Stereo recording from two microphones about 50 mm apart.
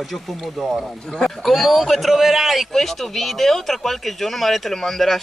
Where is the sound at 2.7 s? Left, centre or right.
Centre.